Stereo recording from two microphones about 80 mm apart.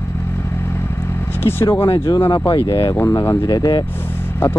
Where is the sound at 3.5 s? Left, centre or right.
Left.